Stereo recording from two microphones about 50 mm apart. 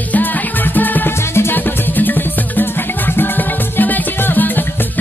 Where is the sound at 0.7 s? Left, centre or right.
Left.